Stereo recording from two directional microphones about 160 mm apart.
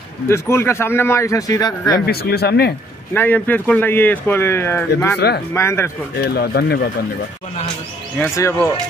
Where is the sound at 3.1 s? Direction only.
10° left (ahead or behind).